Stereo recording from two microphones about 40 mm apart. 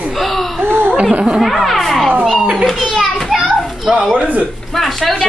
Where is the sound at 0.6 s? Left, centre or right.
Right.